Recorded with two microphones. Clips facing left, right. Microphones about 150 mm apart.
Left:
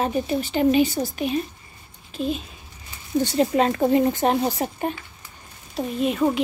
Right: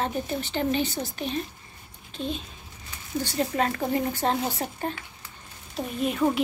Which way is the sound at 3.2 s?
20° left (ahead or behind).